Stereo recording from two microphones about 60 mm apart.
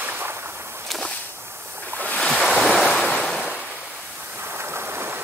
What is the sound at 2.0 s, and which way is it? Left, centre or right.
Waves, left.